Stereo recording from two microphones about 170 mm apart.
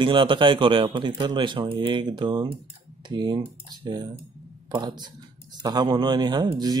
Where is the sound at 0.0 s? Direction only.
30° right (ahead or behind).